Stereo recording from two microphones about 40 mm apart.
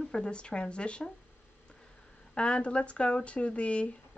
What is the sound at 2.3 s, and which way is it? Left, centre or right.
Speech, left.